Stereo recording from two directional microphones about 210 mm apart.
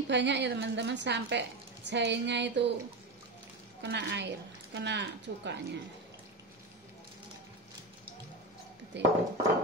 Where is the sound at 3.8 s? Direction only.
60° right (ahead or behind).